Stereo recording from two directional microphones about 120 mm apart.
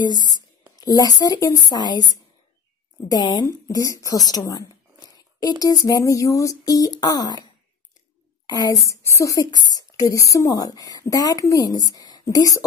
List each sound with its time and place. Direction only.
0.3 s a woman's voice: 35° left (ahead or behind)
5.0 s a sound: 35° left (ahead or behind)
5.6 s speech: 30° left (ahead or behind)
8.8 s a woman's voice: 25° left (ahead or behind)